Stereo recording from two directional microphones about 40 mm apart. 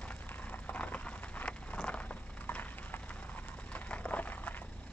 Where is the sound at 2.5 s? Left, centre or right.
Left.